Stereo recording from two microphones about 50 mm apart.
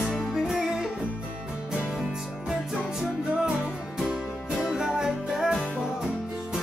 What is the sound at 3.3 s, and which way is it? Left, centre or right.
Music, right.